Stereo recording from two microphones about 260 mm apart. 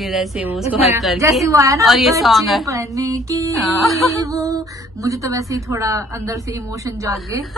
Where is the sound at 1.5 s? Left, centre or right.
Centre.